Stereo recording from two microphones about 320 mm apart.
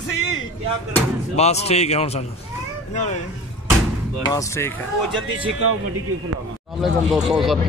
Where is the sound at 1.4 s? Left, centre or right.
Centre.